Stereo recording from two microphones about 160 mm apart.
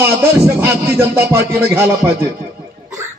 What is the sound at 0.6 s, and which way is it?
Music, 15° right (ahead or behind).